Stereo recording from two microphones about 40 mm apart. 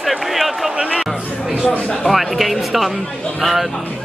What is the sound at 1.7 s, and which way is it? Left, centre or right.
Speech, left.